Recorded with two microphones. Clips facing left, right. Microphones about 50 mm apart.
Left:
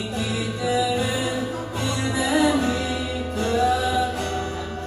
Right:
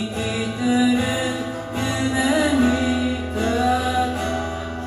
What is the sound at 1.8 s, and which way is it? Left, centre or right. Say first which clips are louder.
Music: right 4 dB; right.